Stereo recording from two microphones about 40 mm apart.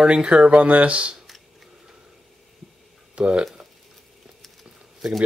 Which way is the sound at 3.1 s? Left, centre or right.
Right.